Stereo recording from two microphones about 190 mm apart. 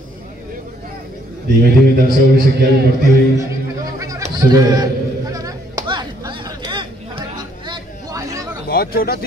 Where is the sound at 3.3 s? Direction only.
15° right (ahead or behind).